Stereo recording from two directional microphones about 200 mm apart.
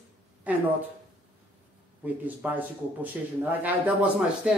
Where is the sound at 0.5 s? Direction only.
5° right (ahead or behind).